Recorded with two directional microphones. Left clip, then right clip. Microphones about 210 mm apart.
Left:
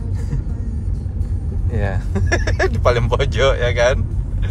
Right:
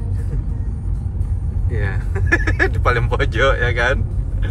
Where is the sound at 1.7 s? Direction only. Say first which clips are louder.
Left 2 dB; 20° left (ahead or behind); by 4.0 s centre (ahead or behind).